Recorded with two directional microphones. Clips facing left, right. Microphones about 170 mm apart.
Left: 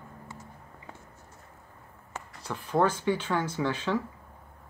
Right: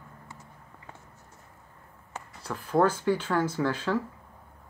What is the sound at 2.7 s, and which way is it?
Speech, 5° right (ahead or behind).